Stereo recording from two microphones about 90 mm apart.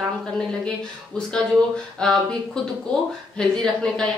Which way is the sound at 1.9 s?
10° left (ahead or behind).